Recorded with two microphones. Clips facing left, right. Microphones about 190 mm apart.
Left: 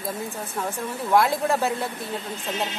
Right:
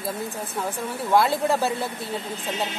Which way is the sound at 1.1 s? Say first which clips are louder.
Even; centre (ahead or behind).